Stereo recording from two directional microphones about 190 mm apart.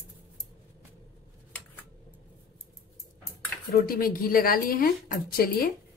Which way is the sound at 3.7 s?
50° left (ahead or behind).